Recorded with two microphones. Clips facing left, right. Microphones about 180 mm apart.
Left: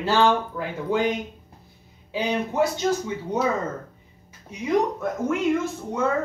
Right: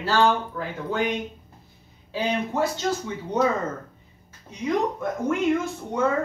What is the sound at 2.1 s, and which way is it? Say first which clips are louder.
Speech: even; 15° left (ahead or behind).